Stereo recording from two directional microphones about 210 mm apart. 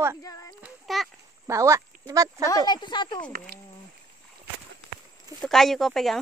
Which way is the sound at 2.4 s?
20° left (ahead or behind).